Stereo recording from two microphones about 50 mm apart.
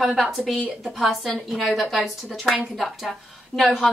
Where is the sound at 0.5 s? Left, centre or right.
Centre.